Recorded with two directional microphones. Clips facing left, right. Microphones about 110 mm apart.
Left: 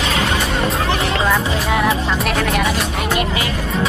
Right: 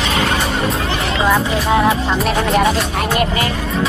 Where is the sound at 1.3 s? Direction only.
30° right (ahead or behind).